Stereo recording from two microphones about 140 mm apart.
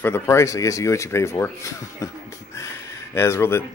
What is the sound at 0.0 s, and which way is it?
Speech, 20° left (ahead or behind).